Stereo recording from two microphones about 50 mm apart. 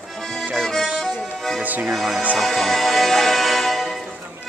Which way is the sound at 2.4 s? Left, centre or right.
Centre.